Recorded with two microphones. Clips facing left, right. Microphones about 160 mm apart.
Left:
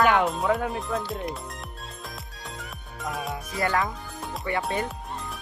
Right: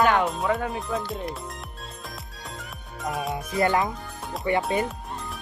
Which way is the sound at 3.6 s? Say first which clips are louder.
Right 3 dB; 20° right (ahead or behind).